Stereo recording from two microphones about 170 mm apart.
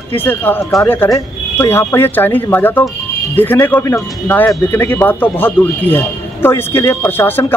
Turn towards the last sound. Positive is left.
turn(degrees=10)  # may be behind; listen again after turning